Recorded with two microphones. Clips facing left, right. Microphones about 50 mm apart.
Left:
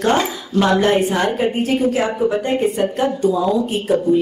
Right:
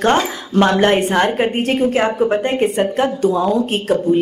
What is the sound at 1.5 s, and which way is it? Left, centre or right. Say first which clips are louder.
A woman's voice: right 1 dB; right.